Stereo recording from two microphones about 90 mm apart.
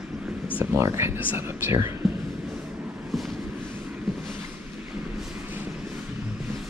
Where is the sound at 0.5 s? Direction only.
25° right (ahead or behind).